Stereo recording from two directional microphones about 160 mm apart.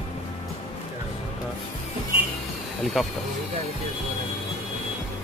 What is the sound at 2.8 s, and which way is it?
Speech, centre (ahead or behind).